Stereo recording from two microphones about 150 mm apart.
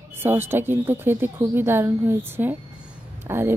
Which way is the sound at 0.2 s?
15° right (ahead or behind).